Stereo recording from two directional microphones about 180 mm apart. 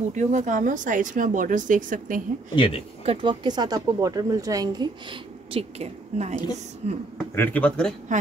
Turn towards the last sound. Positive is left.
turn(degrees=5)  # may be behind; listen again after turning